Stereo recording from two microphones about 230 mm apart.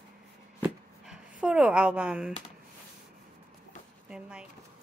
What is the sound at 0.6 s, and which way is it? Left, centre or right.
Chopping, centre.